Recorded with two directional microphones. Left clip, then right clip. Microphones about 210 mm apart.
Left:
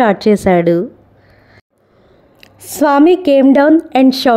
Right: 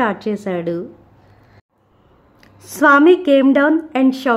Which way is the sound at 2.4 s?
20° left (ahead or behind).